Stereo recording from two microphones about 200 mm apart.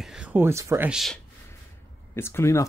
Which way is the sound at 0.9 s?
Centre (ahead or behind).